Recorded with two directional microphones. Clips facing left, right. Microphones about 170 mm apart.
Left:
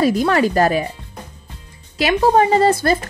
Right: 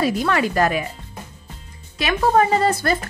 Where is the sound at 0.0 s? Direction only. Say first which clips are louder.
Left 4 dB; 40° left (ahead or behind).